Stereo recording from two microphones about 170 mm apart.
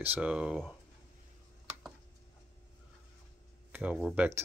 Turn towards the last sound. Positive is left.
turn(degrees=-10)  # may be behind; listen again after turning